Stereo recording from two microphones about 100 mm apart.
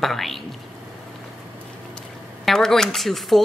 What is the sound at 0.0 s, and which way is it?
Speech, centre (ahead or behind).